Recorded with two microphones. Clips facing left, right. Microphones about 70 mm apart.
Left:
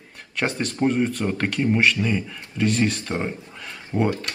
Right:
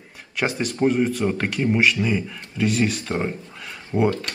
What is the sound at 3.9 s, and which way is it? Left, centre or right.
Speech, centre.